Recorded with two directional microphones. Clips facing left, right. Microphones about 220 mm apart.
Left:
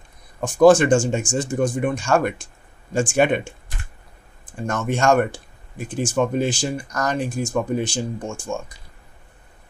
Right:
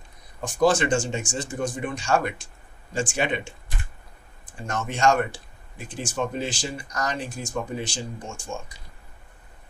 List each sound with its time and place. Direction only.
0.4 s speech: 50° left (ahead or behind)
4.6 s speech: 50° left (ahead or behind)